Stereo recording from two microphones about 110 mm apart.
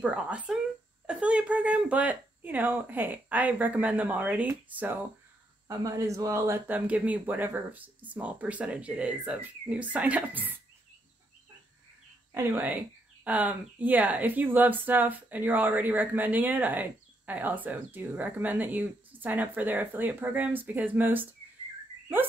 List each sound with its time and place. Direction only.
0.0 s speech: 10° right (ahead or behind)
5.7 s speech: 30° right (ahead or behind)
6.9 s speech: 15° right (ahead or behind)
12.4 s speech: 20° right (ahead or behind)